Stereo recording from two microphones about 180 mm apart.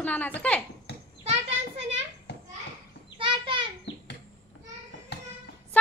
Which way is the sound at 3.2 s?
25° right (ahead or behind).